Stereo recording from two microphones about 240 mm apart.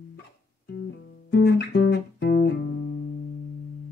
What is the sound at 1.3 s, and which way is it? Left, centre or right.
Music, left.